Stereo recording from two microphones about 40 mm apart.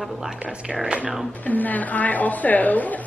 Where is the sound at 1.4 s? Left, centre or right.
Left.